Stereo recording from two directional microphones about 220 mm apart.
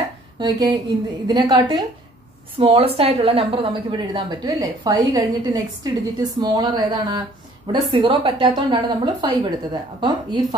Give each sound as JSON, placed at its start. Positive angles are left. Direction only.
{"t": 0.4, "sound": "a woman's voice", "side_deg": -20}